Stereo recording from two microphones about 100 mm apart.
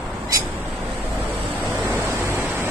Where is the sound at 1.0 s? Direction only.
20° right (ahead or behind).